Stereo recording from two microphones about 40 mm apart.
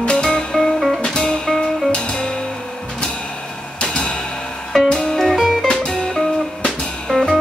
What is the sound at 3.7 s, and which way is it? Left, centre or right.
Music, left.